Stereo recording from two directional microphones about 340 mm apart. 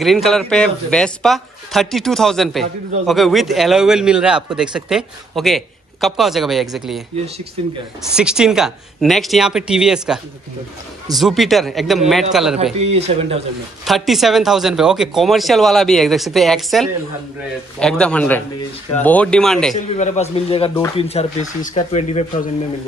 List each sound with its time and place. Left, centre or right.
0.0 s speech: centre
8.0 s speech: centre
12.7 s speech: centre
13.8 s speech: centre
19.7 s speech: centre